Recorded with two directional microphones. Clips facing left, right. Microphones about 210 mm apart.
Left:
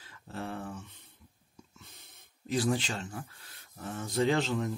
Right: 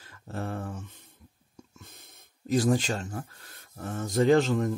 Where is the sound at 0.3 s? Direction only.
45° right (ahead or behind).